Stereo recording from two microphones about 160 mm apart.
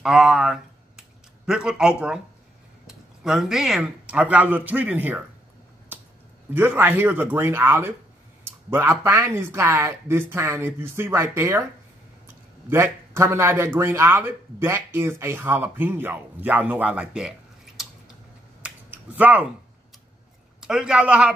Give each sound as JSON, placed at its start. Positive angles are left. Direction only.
{"t": 0.0, "sound": "speech", "side_deg": -5}
{"t": 6.5, "sound": "speech", "side_deg": -15}
{"t": 12.6, "sound": "speech", "side_deg": -15}
{"t": 18.6, "sound": "finger snapping", "side_deg": -10}
{"t": 20.6, "sound": "speech", "side_deg": -5}